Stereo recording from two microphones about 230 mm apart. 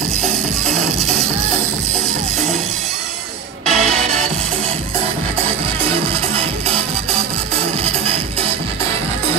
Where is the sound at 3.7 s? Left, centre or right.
Right.